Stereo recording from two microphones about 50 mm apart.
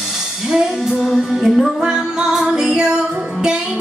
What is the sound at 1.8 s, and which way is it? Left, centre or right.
Music, centre.